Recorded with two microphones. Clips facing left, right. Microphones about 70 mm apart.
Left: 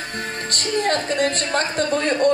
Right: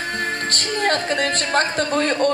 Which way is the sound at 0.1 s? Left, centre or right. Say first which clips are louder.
Right 4 dB; right.